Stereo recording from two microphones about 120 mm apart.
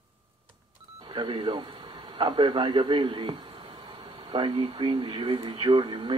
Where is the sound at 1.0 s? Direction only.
45° right (ahead or behind).